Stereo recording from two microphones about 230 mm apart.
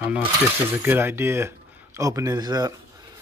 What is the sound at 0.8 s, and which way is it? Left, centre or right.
Speech, centre.